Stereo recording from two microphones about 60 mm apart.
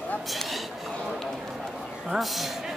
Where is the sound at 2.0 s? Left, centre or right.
Centre.